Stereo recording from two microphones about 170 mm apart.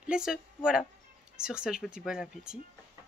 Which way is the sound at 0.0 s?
5° right (ahead or behind).